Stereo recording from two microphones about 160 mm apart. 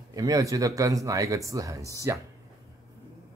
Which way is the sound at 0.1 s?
20° right (ahead or behind).